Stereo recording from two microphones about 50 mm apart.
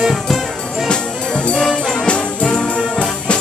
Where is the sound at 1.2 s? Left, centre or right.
Left.